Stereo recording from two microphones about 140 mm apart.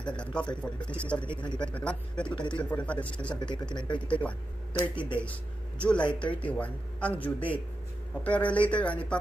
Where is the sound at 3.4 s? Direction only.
35° left (ahead or behind).